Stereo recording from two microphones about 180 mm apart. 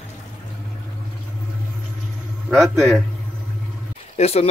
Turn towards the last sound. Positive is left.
turn(degrees=35)  # may be behind; listen again after turning